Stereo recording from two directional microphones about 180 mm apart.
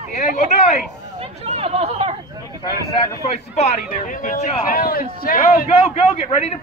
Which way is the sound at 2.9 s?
35° left (ahead or behind).